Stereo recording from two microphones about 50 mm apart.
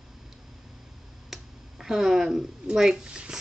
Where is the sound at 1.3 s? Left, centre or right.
Centre.